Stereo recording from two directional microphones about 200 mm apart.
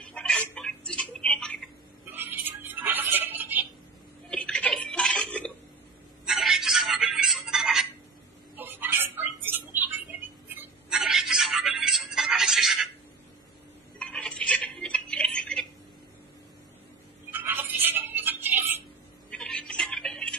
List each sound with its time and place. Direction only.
0.1 s tick-tock: 5° left (ahead or behind)
2.1 s music: 10° right (ahead or behind)
4.3 s a sound: 5° left (ahead or behind)
8.5 s tick-tock: 10° right (ahead or behind)
10.5 s music: centre (ahead or behind)
13.9 s tick-tock: 5° left (ahead or behind)
17.3 s music: 10° right (ahead or behind)
19.3 s music: 5° left (ahead or behind)